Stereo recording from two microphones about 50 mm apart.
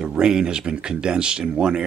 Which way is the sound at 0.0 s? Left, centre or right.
Centre.